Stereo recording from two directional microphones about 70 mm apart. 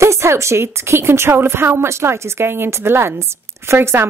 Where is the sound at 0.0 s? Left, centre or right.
Right.